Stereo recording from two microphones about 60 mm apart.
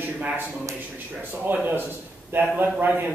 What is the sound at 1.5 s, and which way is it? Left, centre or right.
A man's voice, right.